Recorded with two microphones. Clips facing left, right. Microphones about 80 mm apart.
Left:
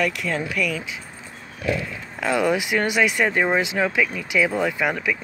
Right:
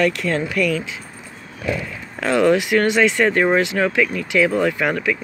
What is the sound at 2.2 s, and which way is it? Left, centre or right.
Speech, centre.